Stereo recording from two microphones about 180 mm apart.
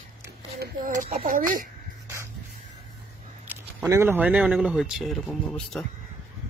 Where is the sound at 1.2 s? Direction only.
50° right (ahead or behind).